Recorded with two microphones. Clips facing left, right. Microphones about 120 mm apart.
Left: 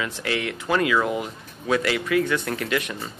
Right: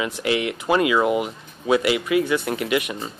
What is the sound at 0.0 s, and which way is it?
A man's voice, 15° right (ahead or behind).